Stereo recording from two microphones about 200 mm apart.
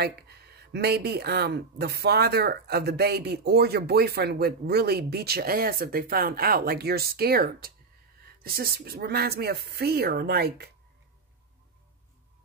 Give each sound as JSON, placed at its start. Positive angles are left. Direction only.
{"t": 0.0, "sound": "speech", "side_deg": -55}